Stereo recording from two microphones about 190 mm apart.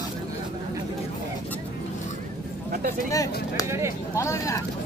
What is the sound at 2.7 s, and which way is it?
Speech, 50° right (ahead or behind).